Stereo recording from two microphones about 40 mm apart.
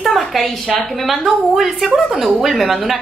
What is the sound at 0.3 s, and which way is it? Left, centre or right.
A woman's voice, centre.